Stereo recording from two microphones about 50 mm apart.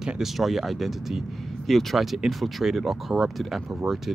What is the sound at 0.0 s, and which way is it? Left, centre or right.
Speech, centre.